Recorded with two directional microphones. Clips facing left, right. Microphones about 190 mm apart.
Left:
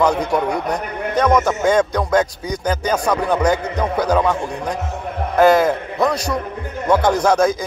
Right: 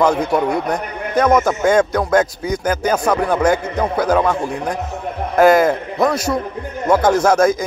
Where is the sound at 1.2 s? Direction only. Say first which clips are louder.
Right 2 dB; 5° right (ahead or behind).